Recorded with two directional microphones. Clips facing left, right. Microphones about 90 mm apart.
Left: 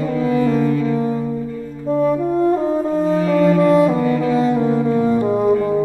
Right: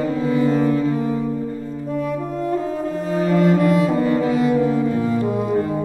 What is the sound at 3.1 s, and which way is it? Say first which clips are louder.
Cello: right 1 dB; 30° right (ahead or behind).